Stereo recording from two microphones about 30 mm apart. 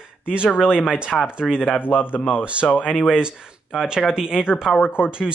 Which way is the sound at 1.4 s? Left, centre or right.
Centre.